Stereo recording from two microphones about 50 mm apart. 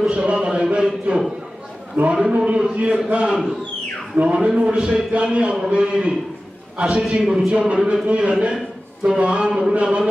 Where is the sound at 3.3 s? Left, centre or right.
Centre.